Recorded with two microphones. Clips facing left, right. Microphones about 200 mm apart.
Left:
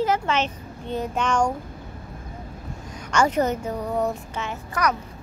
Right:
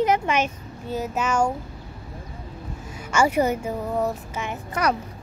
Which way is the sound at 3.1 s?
10° right (ahead or behind).